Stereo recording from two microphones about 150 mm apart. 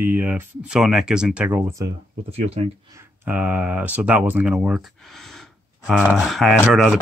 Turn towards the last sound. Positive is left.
turn(degrees=0)  # may be behind; listen again after turning